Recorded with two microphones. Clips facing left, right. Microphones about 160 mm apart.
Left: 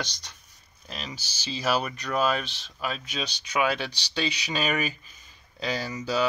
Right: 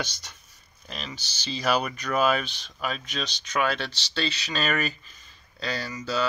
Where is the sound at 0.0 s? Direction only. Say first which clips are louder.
Right 2 dB; 5° right (ahead or behind).